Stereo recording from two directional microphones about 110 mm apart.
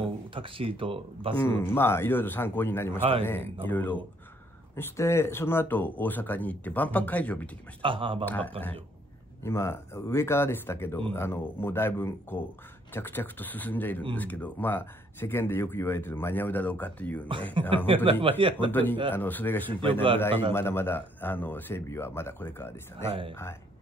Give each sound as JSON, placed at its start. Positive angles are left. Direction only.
{"t": 0.0, "sound": "speech", "side_deg": -55}
{"t": 1.7, "sound": "speech", "side_deg": 20}
{"t": 3.0, "sound": "speech", "side_deg": -60}
{"t": 3.3, "sound": "speech", "side_deg": 20}
{"t": 7.8, "sound": "speech", "side_deg": -50}
{"t": 8.3, "sound": "speech", "side_deg": 15}
{"t": 17.8, "sound": "speech", "side_deg": -55}
{"t": 18.7, "sound": "speech", "side_deg": 15}
{"t": 19.7, "sound": "speech", "side_deg": -50}
{"t": 20.5, "sound": "speech", "side_deg": 20}
{"t": 23.0, "sound": "speech", "side_deg": -55}